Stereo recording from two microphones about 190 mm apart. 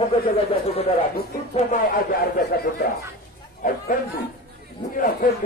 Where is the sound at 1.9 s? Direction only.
50° left (ahead or behind).